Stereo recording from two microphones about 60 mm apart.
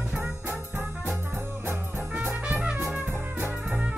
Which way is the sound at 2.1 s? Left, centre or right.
Right.